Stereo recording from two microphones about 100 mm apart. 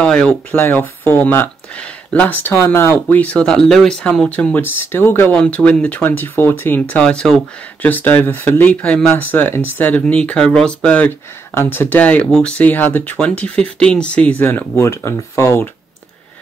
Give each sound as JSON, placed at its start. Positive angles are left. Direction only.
{"t": 0.0, "sound": "speech", "side_deg": 10}
{"t": 7.8, "sound": "speech", "side_deg": 20}